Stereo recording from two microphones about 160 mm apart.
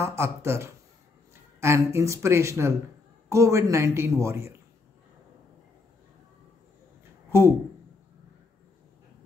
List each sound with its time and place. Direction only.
0.0 s a man's voice: 15° right (ahead or behind)
7.2 s speech: 15° right (ahead or behind)